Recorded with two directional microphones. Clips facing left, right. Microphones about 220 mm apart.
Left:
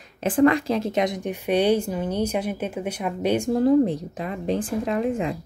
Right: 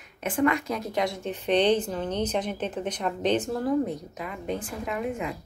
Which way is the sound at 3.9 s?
35° left (ahead or behind).